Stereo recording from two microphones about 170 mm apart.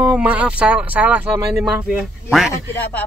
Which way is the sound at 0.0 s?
5° right (ahead or behind).